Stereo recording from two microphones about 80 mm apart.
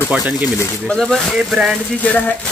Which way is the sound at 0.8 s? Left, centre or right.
Centre.